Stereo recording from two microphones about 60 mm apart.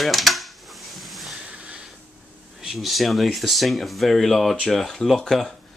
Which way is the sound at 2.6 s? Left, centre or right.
Centre.